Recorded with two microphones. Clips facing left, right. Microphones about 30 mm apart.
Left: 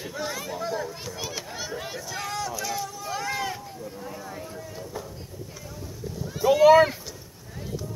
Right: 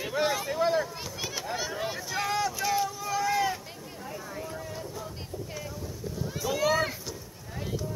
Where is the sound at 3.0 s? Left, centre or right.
Centre.